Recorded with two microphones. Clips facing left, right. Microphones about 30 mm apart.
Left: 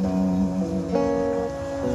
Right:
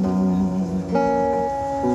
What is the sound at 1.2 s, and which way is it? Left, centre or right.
Music, centre.